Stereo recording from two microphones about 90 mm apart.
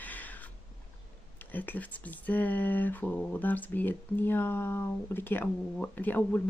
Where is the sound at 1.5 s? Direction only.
20° left (ahead or behind).